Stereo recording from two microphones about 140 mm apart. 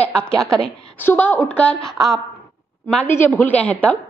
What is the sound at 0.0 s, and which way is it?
A woman's voice, 5° left (ahead or behind).